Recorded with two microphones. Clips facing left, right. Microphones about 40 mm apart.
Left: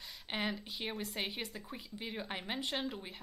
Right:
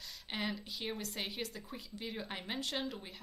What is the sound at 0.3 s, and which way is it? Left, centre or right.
A woman's voice, centre.